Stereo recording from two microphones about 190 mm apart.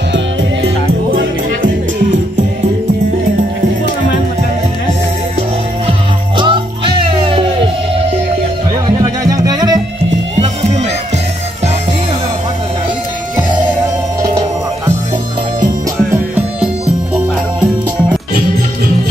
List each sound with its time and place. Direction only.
5.9 s music: 25° right (ahead or behind)
9.0 s music: 20° right (ahead or behind)
10.4 s music: 35° right (ahead or behind)